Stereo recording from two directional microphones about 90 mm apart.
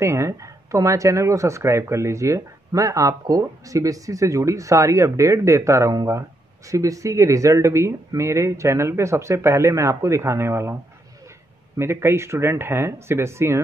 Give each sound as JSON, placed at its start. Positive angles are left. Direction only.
{"t": 0.0, "sound": "speech", "side_deg": -30}